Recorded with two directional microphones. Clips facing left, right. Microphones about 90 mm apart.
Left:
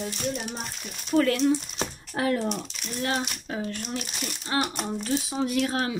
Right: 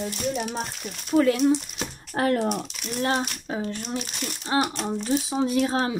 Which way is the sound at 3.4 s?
20° right (ahead or behind).